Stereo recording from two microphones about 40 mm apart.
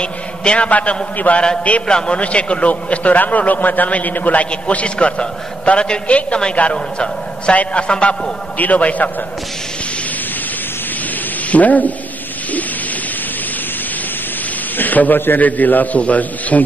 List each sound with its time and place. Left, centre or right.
0.0 s a man's voice: left
0.7 s a man's voice: left
1.9 s a man's voice: left
4.5 s a man's voice: left
8.5 s a man's voice: left
11.5 s a man's voice: left
14.8 s a man's voice: left